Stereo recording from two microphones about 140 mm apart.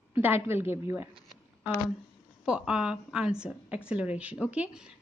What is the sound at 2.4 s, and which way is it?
A woman's voice, 5° right (ahead or behind).